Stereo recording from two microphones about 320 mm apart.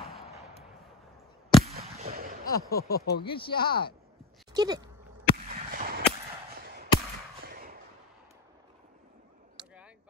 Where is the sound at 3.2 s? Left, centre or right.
Centre.